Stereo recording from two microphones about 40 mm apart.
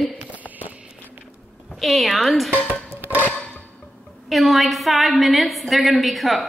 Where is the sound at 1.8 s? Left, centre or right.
Centre.